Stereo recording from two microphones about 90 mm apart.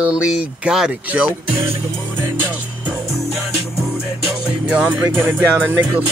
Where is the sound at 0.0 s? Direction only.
10° right (ahead or behind).